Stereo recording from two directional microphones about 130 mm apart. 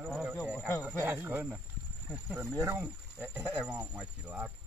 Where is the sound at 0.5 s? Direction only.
15° left (ahead or behind).